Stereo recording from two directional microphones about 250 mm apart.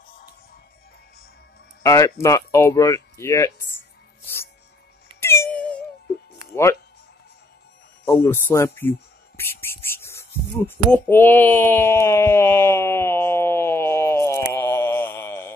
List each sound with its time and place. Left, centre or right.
1.8 s speech: centre
5.2 s music: centre
8.2 s speech: centre
9.4 s a sound: centre